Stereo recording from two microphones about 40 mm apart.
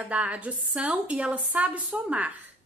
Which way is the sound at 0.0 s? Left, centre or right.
Right.